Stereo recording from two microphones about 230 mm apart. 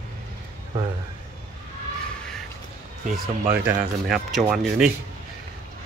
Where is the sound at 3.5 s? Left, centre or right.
Centre.